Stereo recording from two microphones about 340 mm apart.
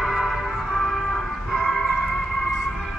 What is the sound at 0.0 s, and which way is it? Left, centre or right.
Music, centre.